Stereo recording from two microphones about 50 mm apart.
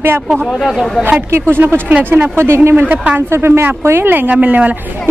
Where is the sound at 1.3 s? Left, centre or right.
Right.